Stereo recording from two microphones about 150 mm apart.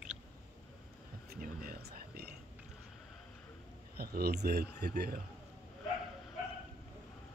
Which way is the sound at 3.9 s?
90° right.